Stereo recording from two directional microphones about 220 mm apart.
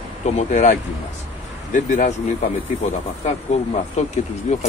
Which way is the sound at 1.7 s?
35° left (ahead or behind).